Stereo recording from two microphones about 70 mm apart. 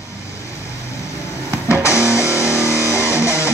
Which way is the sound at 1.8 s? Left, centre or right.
Left.